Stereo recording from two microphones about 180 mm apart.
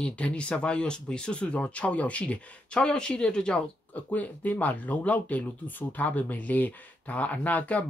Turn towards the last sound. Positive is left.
turn(degrees=10)  # may be behind; listen again after turning